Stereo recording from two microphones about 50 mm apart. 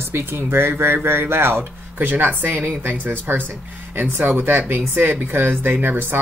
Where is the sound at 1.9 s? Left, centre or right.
Right.